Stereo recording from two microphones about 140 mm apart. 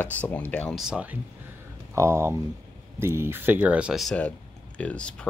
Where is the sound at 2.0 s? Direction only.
20° right (ahead or behind).